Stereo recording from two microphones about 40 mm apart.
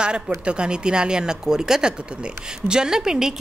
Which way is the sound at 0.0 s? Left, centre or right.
Right.